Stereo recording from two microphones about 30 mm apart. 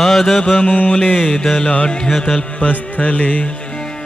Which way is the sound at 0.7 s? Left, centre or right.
Left.